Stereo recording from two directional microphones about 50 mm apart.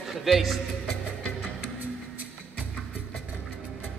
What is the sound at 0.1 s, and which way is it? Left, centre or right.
Speech, centre.